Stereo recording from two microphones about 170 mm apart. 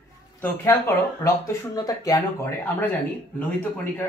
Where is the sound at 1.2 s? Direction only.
20° left (ahead or behind).